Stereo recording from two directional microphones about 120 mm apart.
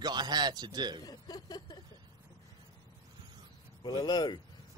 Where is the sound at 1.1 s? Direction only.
35° left (ahead or behind).